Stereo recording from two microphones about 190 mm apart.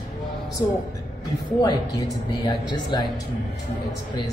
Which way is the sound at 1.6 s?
20° left (ahead or behind).